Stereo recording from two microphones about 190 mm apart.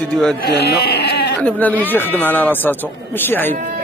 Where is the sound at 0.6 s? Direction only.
55° left (ahead or behind).